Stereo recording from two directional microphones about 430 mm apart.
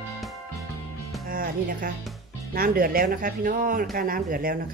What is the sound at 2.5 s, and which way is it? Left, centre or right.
A woman's voice, centre.